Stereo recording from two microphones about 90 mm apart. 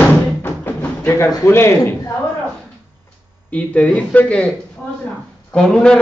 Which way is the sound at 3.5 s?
15° left (ahead or behind).